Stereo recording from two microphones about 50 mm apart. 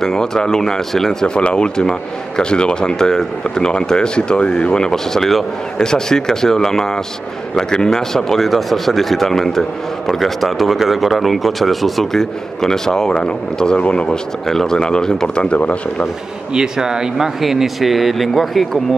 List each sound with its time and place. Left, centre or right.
0.0 s a man's voice: centre
1.3 s a man's voice: centre
14.4 s a man's voice: centre; by 16.1 s left
16.5 s speech: centre